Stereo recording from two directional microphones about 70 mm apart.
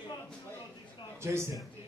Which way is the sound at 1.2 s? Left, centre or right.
Right.